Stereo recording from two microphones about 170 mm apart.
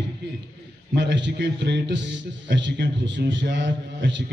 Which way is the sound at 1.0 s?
90° right.